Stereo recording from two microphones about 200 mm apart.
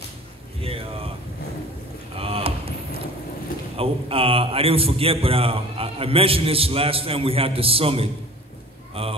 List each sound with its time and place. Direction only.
0.6 s a sound: 30° right (ahead or behind)
2.1 s rowboat: 30° right (ahead or behind)
3.7 s a man's voice: 30° right (ahead or behind)